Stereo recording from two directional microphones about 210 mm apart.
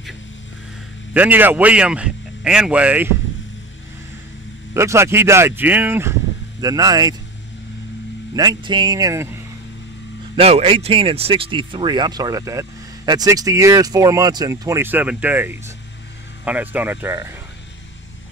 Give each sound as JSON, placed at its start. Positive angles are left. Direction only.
{"t": 1.1, "sound": "speech", "side_deg": -10}
{"t": 4.7, "sound": "speech", "side_deg": -15}
{"t": 8.4, "sound": "speech", "side_deg": -20}
{"t": 10.3, "sound": "speech", "side_deg": -25}